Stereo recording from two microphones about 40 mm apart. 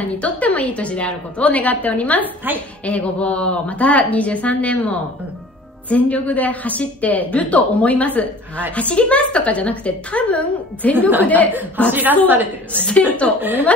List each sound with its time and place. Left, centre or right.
0.0 s a woman's voice: left
11.9 s a woman's voice: right